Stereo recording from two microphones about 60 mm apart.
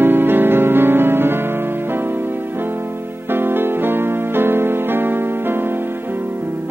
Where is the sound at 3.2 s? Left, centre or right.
Right.